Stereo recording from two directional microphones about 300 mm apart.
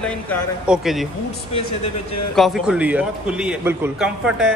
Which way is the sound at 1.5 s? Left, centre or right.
Centre.